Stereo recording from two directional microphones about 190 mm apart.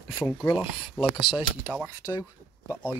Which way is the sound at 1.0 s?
10° right (ahead or behind).